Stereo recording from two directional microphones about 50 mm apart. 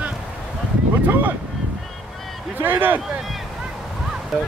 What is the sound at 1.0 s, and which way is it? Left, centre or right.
Vehicle, right.